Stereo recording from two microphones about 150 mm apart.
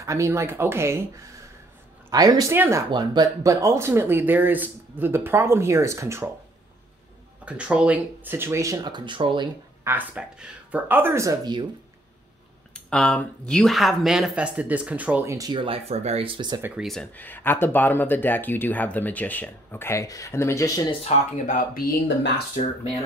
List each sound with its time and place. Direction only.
0.0 s speech: 20° right (ahead or behind)
2.0 s speech: 25° right (ahead or behind)
2.5 s speech: 15° right (ahead or behind)
2.9 s speech: 30° right (ahead or behind)
7.4 s speech: 10° right (ahead or behind); by 9.5 s 35° right (ahead or behind)
9.8 s speech: 10° right (ahead or behind); by 11.6 s 25° right (ahead or behind)
12.7 s speech: 5° left (ahead or behind); by 15.3 s 10° right (ahead or behind)
15.3 s speech: 30° right (ahead or behind)
16.6 s speech: 5° right (ahead or behind); by 20.8 s 20° left (ahead or behind)
21.1 s speech: 45° left (ahead or behind)
21.5 s speech: 75° left (ahead or behind)